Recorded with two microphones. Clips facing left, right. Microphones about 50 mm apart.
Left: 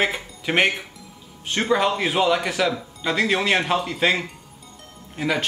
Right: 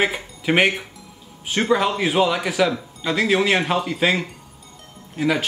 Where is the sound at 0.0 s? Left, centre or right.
Centre.